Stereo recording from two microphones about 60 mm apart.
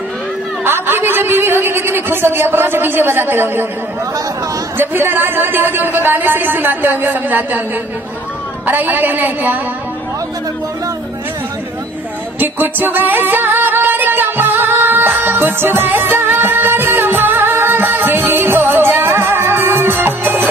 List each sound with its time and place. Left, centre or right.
0.7 s a woman's voice: right
4.7 s a woman's voice: right
8.6 s a woman's voice: right
12.4 s music: right